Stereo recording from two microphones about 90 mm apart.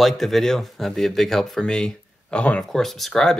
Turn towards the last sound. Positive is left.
turn(degrees=5)  # may be behind; listen again after turning